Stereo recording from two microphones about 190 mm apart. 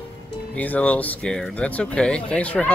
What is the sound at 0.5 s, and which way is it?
Speech, 10° left (ahead or behind).